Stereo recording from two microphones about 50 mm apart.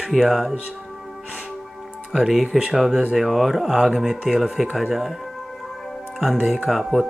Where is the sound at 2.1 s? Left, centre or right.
Centre.